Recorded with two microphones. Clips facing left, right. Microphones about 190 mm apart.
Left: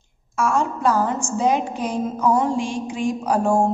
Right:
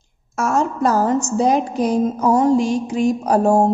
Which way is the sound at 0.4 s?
40° right (ahead or behind).